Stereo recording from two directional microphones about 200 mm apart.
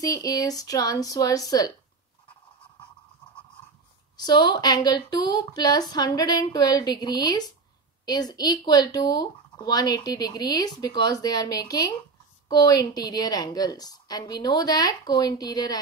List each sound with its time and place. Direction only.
0.0 s speech: 15° left (ahead or behind)
4.2 s speech: 20° left (ahead or behind)